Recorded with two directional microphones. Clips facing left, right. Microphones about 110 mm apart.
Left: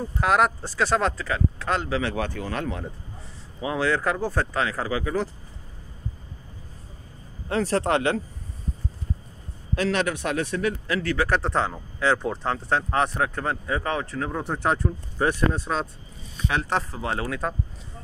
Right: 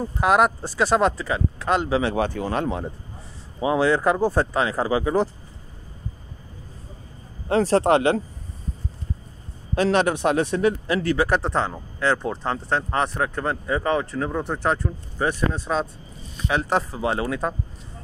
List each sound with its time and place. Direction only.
0.2 s speech: 10° right (ahead or behind)
7.4 s speech: 25° right (ahead or behind)
9.8 s speech: 30° right (ahead or behind); by 17.6 s 10° right (ahead or behind)